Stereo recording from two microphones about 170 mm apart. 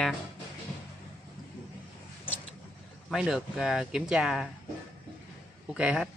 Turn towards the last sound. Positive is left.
turn(degrees=-5)  # may be behind; listen again after turning